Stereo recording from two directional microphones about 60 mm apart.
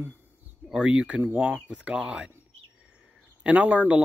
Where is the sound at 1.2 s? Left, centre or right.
Right.